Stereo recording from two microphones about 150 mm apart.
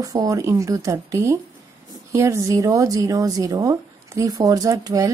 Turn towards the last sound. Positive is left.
turn(degrees=-25)  # may be behind; listen again after turning